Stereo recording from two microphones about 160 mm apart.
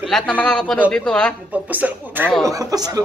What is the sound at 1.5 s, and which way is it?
A man's voice, 10° right (ahead or behind).